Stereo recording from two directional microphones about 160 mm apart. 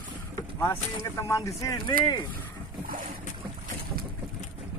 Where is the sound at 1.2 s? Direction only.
20° left (ahead or behind).